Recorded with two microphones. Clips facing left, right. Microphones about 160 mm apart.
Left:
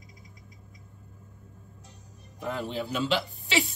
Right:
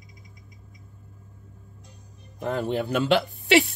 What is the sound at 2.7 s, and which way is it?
Speech, 60° right (ahead or behind).